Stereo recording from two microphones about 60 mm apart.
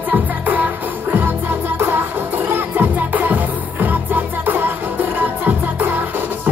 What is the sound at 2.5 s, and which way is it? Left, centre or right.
Music, right.